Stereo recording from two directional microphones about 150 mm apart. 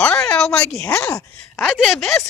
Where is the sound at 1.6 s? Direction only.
Centre (ahead or behind).